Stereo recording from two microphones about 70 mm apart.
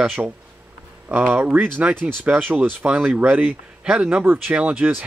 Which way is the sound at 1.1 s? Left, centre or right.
Right.